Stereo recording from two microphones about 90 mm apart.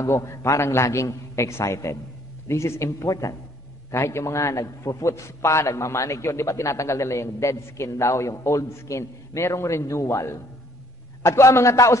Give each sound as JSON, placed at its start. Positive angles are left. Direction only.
{"t": 0.0, "sound": "a man's voice", "side_deg": 35}